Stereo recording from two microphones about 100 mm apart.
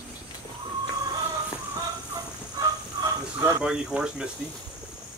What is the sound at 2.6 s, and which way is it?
Fowl, 40° right (ahead or behind).